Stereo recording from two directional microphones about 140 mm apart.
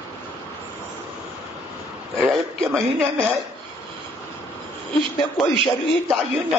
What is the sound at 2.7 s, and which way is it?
Speech, 20° right (ahead or behind).